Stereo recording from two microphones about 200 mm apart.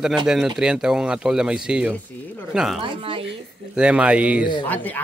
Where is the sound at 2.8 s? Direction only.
25° right (ahead or behind).